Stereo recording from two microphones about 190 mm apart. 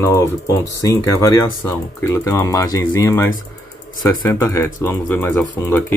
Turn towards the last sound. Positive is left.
turn(degrees=10)  # may be behind; listen again after turning